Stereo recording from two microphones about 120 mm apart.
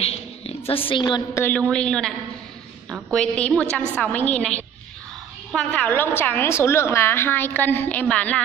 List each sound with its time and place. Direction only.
0.0 s a sound: 55° left (ahead or behind)
1.3 s a woman's voice: 15° left (ahead or behind)
1.7 s a woman's voice: 5° left (ahead or behind)